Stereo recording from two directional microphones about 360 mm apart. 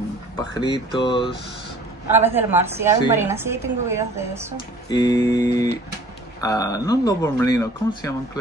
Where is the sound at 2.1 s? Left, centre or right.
Centre.